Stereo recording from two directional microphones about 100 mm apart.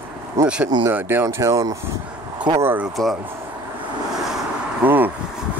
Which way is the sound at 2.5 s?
25° right (ahead or behind).